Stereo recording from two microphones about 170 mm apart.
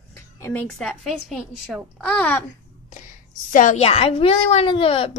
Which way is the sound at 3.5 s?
45° left (ahead or behind).